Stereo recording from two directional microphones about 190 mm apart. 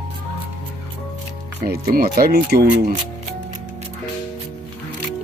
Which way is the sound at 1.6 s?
50° right (ahead or behind).